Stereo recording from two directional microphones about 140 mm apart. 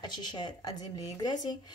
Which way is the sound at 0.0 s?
30° left (ahead or behind).